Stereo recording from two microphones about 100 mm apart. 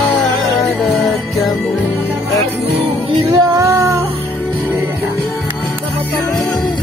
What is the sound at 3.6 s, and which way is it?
Music, 30° right (ahead or behind).